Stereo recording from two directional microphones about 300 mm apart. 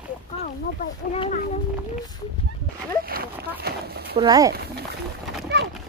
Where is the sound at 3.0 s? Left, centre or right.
Right.